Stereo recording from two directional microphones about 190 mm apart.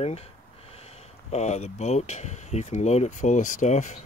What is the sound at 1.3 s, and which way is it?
Speech, 35° left (ahead or behind).